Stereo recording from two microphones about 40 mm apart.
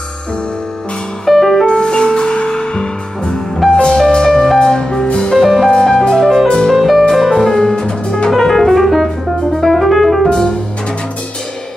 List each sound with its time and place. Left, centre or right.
1.2 s music: centre
1.7 s music: left
5.4 s music: centre
5.7 s music: centre
6.7 s music: centre; by 8.3 s left
8.3 s music: centre
9.6 s piano: centre